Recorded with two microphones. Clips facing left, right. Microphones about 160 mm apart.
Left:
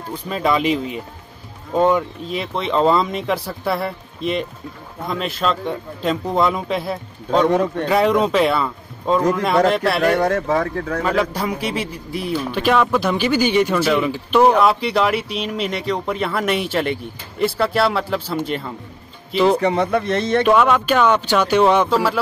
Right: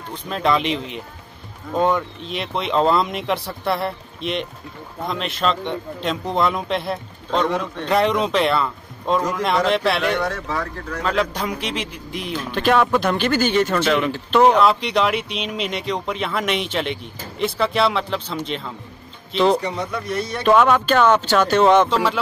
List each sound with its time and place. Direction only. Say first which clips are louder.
0.1 s speech: left 1 dB; 5° left (ahead or behind)
7.4 s speech: left 6 dB; 50° left (ahead or behind)
7.9 s speech: left 1 dB; 5° left (ahead or behind)
10.0 s speech: left 5 dB; 45° left (ahead or behind)
11.1 s speech: even; 5° left (ahead or behind)
12.5 s speech: right 1 dB; 5° left (ahead or behind)
19.6 s speech: left 8 dB; 55° left (ahead or behind); by 20.4 s 80° left
20.4 s speech: right 3 dB; 5° left (ahead or behind)